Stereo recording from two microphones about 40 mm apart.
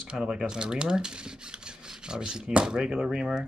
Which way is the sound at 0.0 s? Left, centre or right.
Right.